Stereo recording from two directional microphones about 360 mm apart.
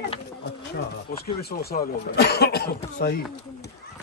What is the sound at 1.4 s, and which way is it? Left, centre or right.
Speech, left.